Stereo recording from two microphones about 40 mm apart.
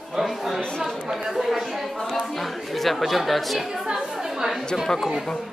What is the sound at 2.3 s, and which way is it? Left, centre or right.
Speech, centre.